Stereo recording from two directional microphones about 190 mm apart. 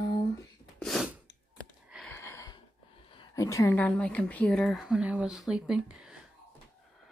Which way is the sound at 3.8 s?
5° left (ahead or behind).